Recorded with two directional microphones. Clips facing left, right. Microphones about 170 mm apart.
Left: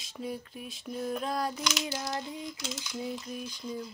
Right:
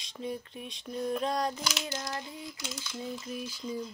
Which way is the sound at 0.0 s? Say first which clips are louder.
Even; 5° left (ahead or behind).